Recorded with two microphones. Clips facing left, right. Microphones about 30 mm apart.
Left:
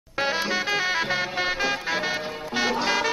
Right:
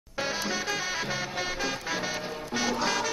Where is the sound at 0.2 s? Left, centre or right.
Left.